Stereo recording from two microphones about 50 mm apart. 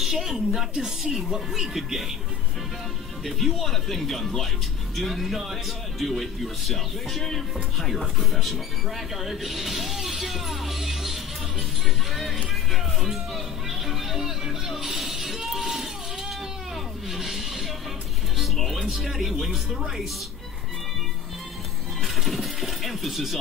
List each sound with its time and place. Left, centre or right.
0.0 s speech: centre
0.7 s a woman's voice: centre
3.3 s speech: centre
12.7 s music: centre
17.1 s a sound: centre
18.4 s music: centre
18.9 s speech: centre
22.0 s speech: centre